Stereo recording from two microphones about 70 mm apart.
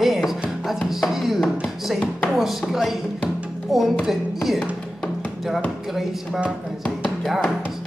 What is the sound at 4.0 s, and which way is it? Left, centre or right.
Speech, centre.